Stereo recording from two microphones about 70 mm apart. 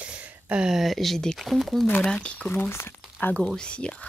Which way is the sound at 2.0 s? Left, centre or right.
Centre.